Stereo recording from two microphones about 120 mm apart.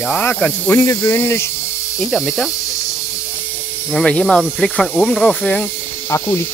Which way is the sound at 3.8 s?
10° left (ahead or behind).